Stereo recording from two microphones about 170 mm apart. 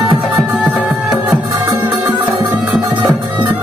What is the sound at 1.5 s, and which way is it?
Music, 15° right (ahead or behind).